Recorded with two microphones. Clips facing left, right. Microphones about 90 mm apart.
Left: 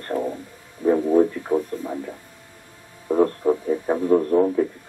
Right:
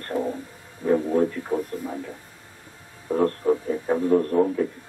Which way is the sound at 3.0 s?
15° left (ahead or behind).